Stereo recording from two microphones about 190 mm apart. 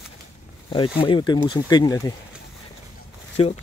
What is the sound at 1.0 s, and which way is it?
Speech, 25° left (ahead or behind).